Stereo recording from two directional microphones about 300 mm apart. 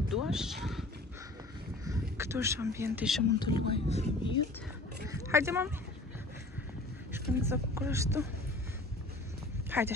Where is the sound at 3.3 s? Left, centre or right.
Centre.